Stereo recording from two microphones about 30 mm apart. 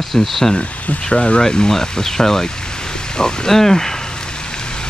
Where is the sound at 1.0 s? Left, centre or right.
Left.